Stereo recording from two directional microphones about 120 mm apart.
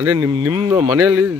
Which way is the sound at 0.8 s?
15° right (ahead or behind).